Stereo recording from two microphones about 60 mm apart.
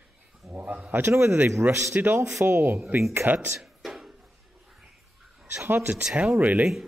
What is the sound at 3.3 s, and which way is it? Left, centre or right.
Speech, right.